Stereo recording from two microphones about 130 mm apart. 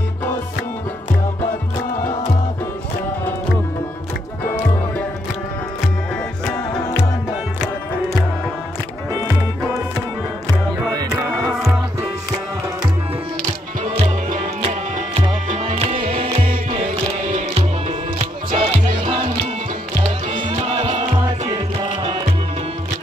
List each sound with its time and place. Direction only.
15.9 s music: 90° right
16.7 s music: 65° right (ahead or behind); by 18.8 s 45° right (ahead or behind)
20.2 s music: 45° right (ahead or behind)